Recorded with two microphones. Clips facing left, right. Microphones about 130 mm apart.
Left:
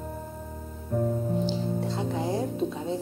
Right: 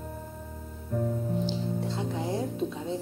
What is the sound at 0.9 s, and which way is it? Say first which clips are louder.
Music: left 3 dB; 40° left (ahead or behind).